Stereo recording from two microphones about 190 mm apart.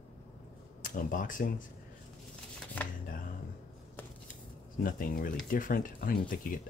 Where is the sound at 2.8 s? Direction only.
10° left (ahead or behind).